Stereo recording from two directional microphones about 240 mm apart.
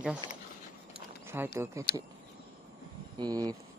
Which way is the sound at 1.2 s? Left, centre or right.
Centre.